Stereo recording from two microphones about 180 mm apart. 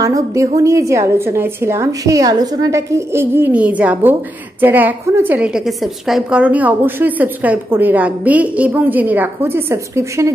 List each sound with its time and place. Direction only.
0.0 s a woman's voice: 15° right (ahead or behind)